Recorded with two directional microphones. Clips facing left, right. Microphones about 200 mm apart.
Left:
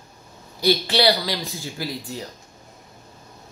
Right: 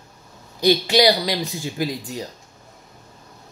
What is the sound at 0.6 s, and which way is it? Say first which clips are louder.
Speech: right 3 dB; 15° right (ahead or behind).